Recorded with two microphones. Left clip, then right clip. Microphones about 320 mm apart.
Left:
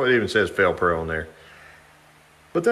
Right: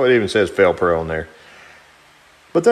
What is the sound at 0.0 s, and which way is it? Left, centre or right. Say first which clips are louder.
Speech: right 5 dB; centre.